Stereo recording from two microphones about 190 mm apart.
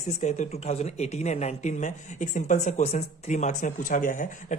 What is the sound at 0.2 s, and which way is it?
Speech, 35° left (ahead or behind).